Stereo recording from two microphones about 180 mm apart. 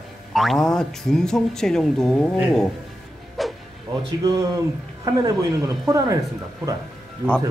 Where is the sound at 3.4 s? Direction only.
Centre (ahead or behind).